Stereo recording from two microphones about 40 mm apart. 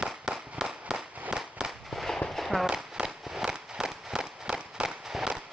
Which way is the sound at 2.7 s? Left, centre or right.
Centre.